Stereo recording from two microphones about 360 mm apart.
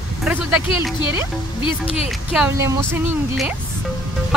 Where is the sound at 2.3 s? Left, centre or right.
Centre.